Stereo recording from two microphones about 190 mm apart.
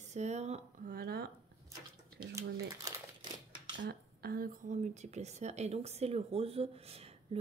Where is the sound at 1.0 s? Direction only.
55° right (ahead or behind).